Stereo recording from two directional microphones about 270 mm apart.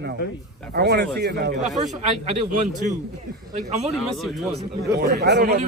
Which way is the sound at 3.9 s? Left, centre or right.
Centre.